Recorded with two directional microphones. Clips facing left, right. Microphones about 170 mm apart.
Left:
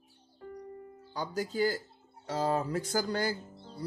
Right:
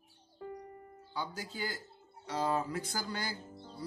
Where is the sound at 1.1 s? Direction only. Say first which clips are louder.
Left 6 dB; 45° left (ahead or behind).